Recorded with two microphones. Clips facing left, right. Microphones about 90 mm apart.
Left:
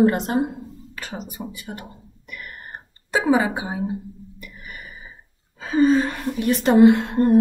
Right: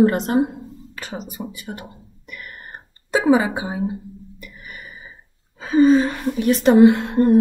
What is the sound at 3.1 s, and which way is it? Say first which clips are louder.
Speech: right 3 dB; 20° right (ahead or behind).